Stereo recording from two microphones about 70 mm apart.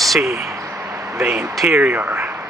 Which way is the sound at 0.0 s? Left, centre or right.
Centre.